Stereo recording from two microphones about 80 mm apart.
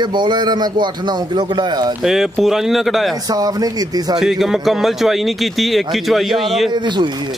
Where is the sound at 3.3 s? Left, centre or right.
Right.